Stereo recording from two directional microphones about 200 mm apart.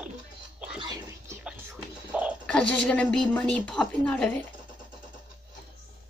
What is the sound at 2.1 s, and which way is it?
Bird, 5° right (ahead or behind).